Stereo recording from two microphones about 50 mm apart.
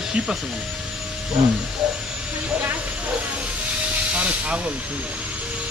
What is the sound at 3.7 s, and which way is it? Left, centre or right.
Steam, right.